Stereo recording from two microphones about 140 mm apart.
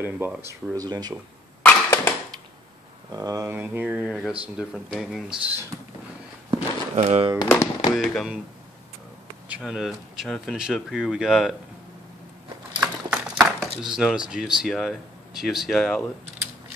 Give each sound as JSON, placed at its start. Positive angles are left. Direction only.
{"t": 0.0, "sound": "speech", "side_deg": -15}
{"t": 1.6, "sound": "a sound", "side_deg": 15}
{"t": 3.1, "sound": "speech", "side_deg": -25}
{"t": 3.5, "sound": "mantra", "side_deg": -15}
{"t": 4.6, "sound": "speech", "side_deg": -5}
{"t": 6.5, "sound": "a sound", "side_deg": -45}
{"t": 7.4, "sound": "speech", "side_deg": 20}
{"t": 7.9, "sound": "speech", "side_deg": 0}
{"t": 9.6, "sound": "speech", "side_deg": 0}
{"t": 12.8, "sound": "a sound", "side_deg": 0}
{"t": 13.8, "sound": "speech", "side_deg": -5}